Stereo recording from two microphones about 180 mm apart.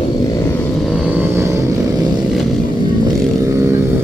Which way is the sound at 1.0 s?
10° right (ahead or behind).